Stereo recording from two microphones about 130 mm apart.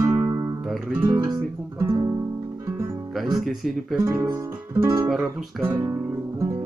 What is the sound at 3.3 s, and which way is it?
Speech, centre (ahead or behind).